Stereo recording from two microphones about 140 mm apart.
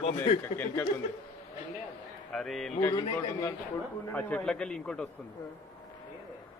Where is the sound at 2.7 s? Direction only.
15° left (ahead or behind).